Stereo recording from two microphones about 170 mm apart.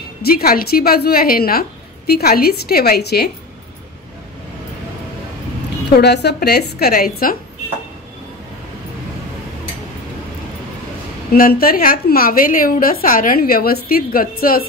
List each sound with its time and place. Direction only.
0.2 s a woman's voice: 60° left (ahead or behind)
5.9 s a woman's voice: 75° left (ahead or behind); by 7.3 s 60° left (ahead or behind)
11.3 s a woman's voice: 60° left (ahead or behind)